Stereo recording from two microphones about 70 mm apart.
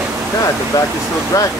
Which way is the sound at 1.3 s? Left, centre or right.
Left.